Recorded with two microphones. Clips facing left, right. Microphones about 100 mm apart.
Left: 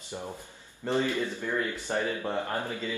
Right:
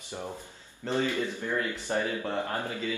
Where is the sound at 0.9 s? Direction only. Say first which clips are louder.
Left 1 dB; 15° left (ahead or behind).